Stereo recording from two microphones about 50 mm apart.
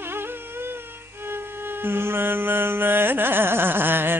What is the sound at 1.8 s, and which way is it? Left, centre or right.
Carnatic music, right.